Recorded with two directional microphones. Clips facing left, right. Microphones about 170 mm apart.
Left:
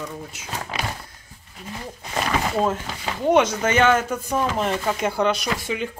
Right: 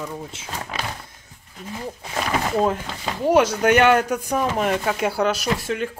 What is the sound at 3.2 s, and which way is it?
Speech, 5° right (ahead or behind).